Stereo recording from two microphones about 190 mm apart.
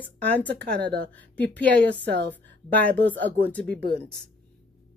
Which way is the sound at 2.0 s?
65° right (ahead or behind).